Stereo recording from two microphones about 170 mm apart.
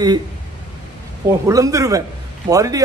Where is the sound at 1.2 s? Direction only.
20° right (ahead or behind).